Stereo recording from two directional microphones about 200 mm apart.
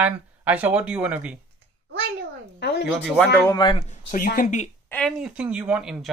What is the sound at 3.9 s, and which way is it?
Speech, 40° left (ahead or behind).